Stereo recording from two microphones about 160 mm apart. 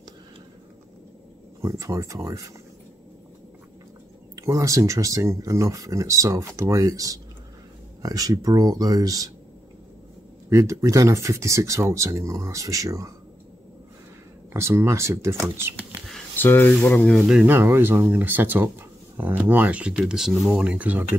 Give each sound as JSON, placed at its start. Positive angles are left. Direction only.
{"t": 1.6, "sound": "speech", "side_deg": -20}
{"t": 4.4, "sound": "speech", "side_deg": -20}
{"t": 10.5, "sound": "speech", "side_deg": -20}
{"t": 14.5, "sound": "speech", "side_deg": -15}
{"t": 16.3, "sound": "speech", "side_deg": 15}
{"t": 17.3, "sound": "speech", "side_deg": -10}